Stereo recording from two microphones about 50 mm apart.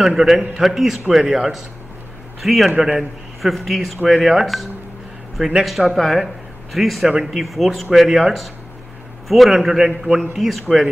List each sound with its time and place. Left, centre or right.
0.0 s a man's voice: centre